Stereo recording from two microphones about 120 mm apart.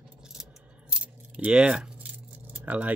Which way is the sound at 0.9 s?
10° right (ahead or behind).